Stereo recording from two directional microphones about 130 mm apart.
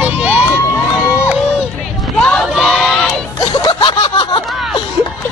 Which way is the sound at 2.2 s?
Centre (ahead or behind).